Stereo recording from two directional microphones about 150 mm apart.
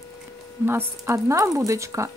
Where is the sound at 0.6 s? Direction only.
15° right (ahead or behind).